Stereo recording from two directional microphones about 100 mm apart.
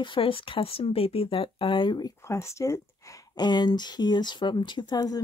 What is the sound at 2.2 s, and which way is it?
Speech, 30° left (ahead or behind).